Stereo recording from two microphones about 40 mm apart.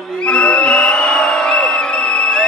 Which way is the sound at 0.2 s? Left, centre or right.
Left.